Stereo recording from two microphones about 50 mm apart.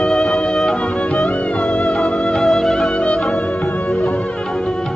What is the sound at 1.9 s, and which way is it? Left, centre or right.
Music, centre.